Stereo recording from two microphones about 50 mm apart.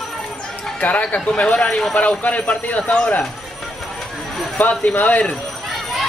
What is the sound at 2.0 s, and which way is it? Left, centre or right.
Speech, left.